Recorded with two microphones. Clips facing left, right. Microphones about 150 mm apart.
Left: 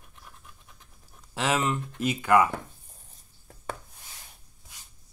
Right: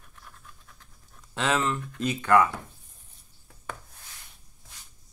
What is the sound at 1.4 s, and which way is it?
Speech, 15° left (ahead or behind).